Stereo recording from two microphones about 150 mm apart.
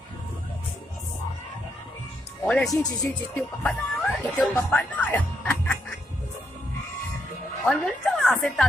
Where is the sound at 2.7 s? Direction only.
25° left (ahead or behind).